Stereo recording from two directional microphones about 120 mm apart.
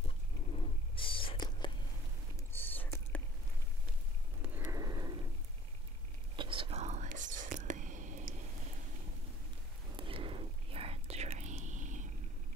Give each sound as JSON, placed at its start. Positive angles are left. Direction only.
{"t": 0.0, "sound": "whispering", "side_deg": 50}
{"t": 2.5, "sound": "a sound", "side_deg": 15}
{"t": 4.6, "sound": "a sound", "side_deg": -30}
{"t": 6.3, "sound": "whispering", "side_deg": -45}
{"t": 6.8, "sound": "whispering", "side_deg": -80}
{"t": 9.9, "sound": "whispering", "side_deg": -50}